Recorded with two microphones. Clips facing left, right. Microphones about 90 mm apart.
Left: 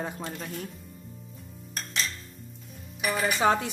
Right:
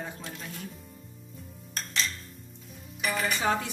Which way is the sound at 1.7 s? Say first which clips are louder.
Even; 5° left (ahead or behind).